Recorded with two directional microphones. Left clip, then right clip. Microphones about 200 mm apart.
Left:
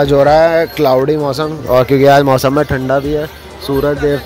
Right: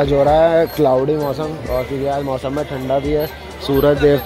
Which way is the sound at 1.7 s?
45° left (ahead or behind).